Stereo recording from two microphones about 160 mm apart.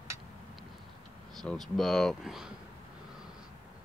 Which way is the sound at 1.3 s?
Centre (ahead or behind).